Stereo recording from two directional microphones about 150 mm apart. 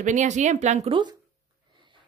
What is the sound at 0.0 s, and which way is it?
Speech, 55° right (ahead or behind).